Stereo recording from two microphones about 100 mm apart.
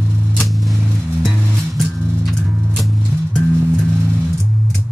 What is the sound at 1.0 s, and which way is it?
Music, 10° left (ahead or behind).